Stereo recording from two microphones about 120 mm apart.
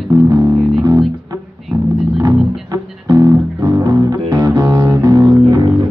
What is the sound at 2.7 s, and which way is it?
Music, 35° right (ahead or behind).